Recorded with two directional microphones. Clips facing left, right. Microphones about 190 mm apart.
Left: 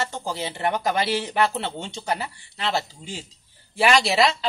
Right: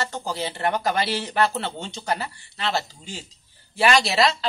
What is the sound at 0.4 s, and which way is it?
Speech, 5° left (ahead or behind).